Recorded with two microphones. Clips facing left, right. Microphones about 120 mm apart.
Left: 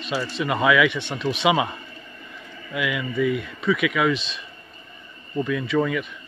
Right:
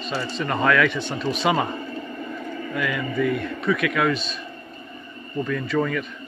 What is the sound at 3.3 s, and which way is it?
Speech, 55° right (ahead or behind).